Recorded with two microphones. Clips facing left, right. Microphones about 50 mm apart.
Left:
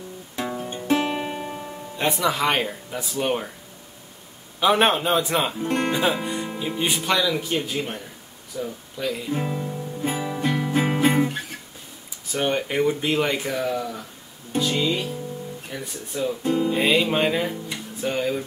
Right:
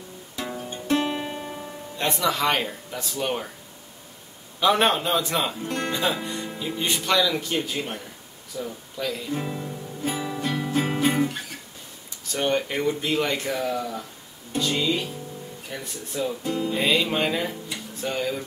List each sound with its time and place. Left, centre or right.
0.5 s music: centre
4.6 s speech: centre
8.5 s speech: centre
8.9 s music: centre
12.3 s speech: centre
14.6 s music: centre
15.7 s speech: centre